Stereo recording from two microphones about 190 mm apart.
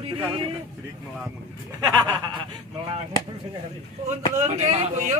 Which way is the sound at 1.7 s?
25° right (ahead or behind).